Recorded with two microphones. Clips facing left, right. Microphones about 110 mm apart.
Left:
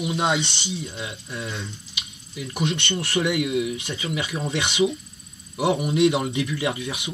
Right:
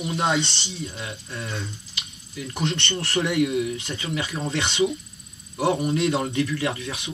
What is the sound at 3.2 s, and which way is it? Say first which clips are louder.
Speech: left 1 dB; 5° right (ahead or behind).